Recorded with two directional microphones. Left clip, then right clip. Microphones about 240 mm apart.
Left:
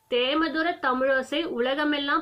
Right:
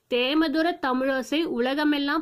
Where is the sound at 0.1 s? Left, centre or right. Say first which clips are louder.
Right 1 dB; right.